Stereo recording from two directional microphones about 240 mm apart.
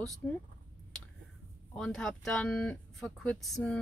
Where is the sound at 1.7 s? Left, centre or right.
Centre.